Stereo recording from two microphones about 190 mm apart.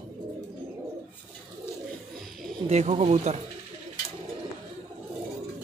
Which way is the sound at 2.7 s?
35° right (ahead or behind).